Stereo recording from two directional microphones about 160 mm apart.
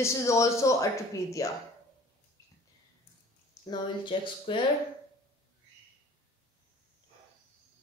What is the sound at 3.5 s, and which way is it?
Speech, 30° left (ahead or behind).